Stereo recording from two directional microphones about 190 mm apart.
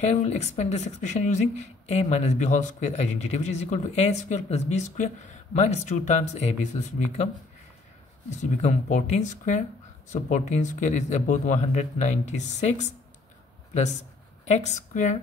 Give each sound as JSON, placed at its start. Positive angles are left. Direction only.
{"t": 0.0, "sound": "a woman's voice", "side_deg": 35}
{"t": 8.3, "sound": "a woman's voice", "side_deg": 40}
{"t": 14.4, "sound": "speech", "side_deg": 40}